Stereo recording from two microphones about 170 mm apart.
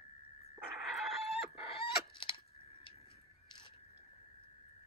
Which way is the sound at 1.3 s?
30° left (ahead or behind).